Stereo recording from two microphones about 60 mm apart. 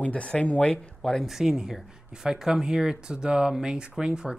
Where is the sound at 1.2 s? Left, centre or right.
Centre.